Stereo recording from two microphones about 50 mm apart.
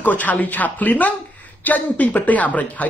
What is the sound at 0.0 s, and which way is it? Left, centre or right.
Speech, left.